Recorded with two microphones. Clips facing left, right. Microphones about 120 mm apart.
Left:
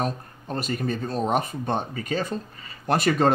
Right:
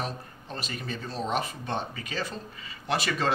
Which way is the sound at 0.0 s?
50° left (ahead or behind).